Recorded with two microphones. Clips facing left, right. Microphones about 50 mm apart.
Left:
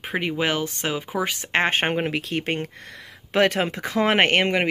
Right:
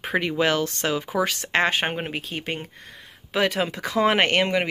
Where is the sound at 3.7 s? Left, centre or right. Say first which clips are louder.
Even; left.